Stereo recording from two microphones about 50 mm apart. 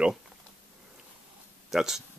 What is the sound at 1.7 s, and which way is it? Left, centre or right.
Speech, centre.